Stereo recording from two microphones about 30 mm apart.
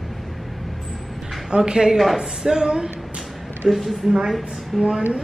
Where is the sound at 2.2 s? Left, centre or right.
Right.